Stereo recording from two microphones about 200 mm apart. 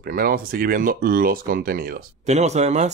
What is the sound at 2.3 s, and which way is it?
Speech, 35° right (ahead or behind).